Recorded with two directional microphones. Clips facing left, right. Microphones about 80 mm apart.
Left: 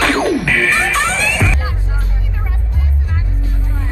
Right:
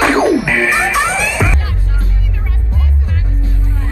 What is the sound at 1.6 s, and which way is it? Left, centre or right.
Music, centre.